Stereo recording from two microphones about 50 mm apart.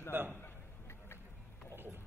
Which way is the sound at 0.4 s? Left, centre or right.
Left.